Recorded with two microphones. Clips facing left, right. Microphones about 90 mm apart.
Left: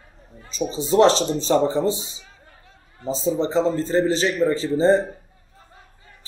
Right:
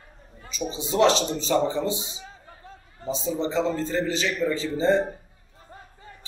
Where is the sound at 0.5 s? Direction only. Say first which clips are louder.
Left 6 dB; 35° left (ahead or behind).